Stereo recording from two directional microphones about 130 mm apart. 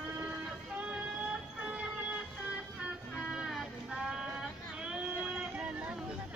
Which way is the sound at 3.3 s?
5° right (ahead or behind).